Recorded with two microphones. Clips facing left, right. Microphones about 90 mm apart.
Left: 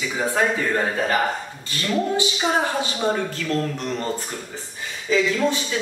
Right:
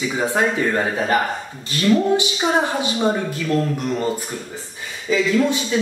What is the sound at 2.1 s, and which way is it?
A woman's voice, 20° right (ahead or behind).